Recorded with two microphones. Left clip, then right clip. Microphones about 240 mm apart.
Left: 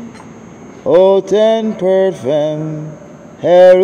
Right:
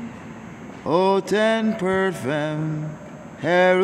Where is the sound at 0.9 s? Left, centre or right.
Right.